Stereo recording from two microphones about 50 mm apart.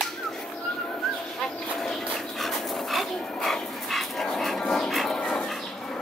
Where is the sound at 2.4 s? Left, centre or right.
Centre.